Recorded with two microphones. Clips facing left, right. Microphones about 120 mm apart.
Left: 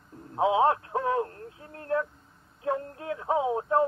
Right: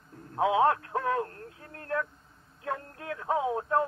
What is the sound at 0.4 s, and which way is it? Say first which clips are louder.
Radio: left 1 dB; 25° left (ahead or behind).